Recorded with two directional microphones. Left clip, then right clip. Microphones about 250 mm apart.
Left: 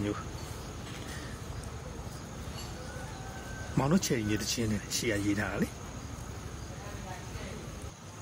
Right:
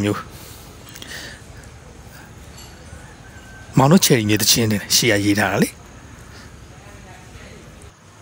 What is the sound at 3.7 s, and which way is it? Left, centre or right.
Speech, right.